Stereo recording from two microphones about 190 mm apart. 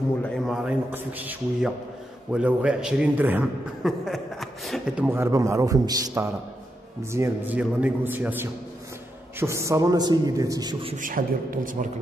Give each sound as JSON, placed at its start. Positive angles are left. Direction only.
{"t": 0.2, "sound": "a man's voice", "side_deg": 0}
{"t": 11.0, "sound": "a woman's voice", "side_deg": -45}